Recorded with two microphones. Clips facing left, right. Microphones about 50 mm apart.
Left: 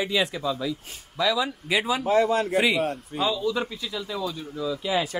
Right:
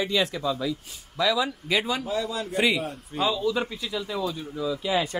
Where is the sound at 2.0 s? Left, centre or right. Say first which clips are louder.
Left 8 dB; left.